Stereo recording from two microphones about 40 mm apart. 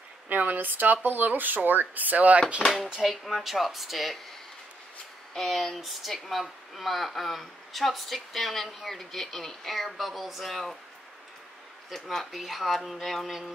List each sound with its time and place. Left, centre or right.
0.3 s speech: right
3.0 s speech: centre
5.4 s speech: centre
11.9 s speech: centre